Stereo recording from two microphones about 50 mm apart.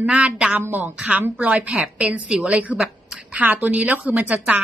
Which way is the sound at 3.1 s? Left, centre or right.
Centre.